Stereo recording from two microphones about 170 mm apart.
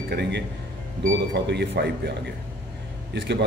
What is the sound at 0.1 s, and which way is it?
Speech, 75° right (ahead or behind).